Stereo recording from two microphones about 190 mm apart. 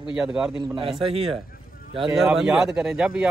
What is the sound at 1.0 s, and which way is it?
Speech, 30° right (ahead or behind).